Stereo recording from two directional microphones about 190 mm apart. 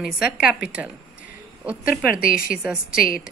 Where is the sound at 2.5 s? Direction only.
5° right (ahead or behind).